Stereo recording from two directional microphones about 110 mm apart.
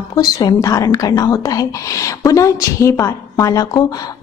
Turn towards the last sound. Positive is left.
turn(degrees=30)  # may be behind; listen again after turning